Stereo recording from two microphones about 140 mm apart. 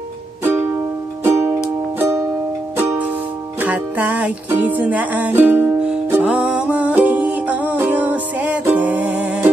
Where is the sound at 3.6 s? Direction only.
10° right (ahead or behind).